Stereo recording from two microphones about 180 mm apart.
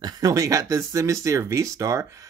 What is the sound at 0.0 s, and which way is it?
Speech, 20° right (ahead or behind).